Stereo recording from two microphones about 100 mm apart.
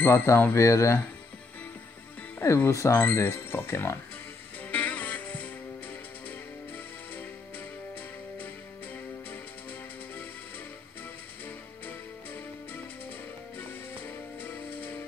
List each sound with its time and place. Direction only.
0.0 s speech: 25° left (ahead or behind)
2.3 s speech: 25° left (ahead or behind)
4.6 s music: 15° left (ahead or behind)
13.6 s music: 20° left (ahead or behind)